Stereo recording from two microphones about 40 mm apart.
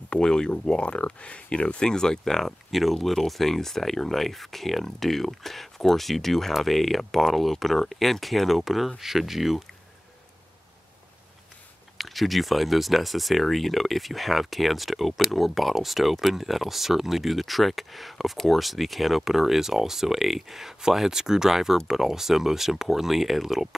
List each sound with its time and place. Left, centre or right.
0.1 s speech: centre
2.7 s speech: centre
12.0 s speech: centre